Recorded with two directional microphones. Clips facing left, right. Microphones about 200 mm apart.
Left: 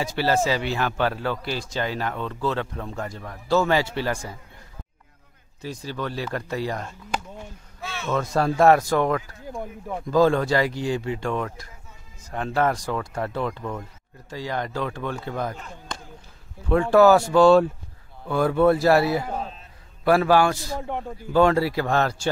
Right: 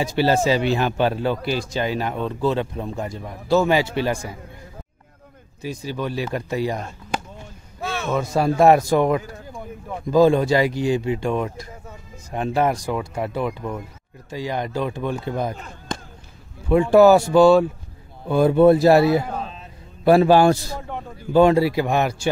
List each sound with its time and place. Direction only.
0.0 s speech: 20° right (ahead or behind)
5.6 s speech: 15° right (ahead or behind)
7.8 s a sound: 50° right (ahead or behind)
8.1 s speech: 10° right (ahead or behind)
18.2 s a man's voice: 20° right (ahead or behind)